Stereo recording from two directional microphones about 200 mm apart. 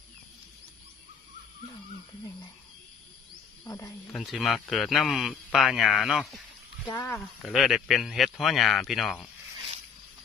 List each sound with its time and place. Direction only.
3.6 s speech: 15° left (ahead or behind)
4.1 s a man's voice: centre (ahead or behind)
6.9 s speech: 15° left (ahead or behind)
7.2 s a man's voice: centre (ahead or behind)